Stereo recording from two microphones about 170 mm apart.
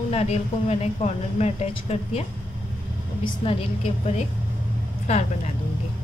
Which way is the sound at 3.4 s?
30° left (ahead or behind).